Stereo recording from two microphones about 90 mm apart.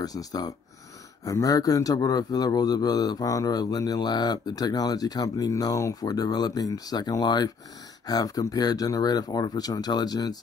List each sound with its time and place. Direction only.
0.0 s a man's voice: 45° left (ahead or behind)